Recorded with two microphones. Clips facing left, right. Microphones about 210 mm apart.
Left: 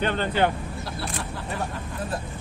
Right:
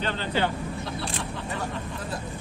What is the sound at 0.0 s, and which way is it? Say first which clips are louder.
Speech: left 4 dB; 55° left (ahead or behind).